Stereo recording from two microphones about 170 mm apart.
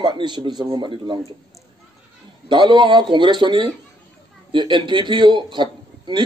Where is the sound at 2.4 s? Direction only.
25° right (ahead or behind).